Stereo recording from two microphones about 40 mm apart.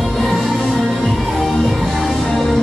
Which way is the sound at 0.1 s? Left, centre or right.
Centre.